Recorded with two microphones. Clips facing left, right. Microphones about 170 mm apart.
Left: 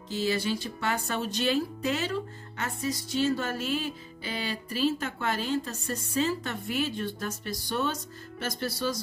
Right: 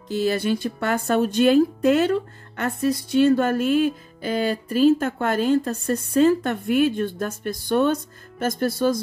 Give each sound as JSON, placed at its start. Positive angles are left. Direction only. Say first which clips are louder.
{"t": 0.1, "sound": "speech", "louder": "right 7 dB", "side_deg": -55}